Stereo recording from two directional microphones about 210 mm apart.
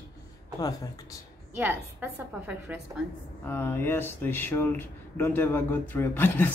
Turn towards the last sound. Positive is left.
turn(degrees=10)  # may be behind; listen again after turning